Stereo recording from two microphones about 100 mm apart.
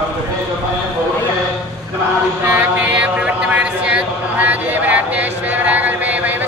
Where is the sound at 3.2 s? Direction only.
10° right (ahead or behind).